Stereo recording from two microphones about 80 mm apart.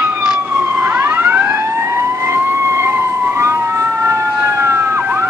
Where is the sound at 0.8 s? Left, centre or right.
Right.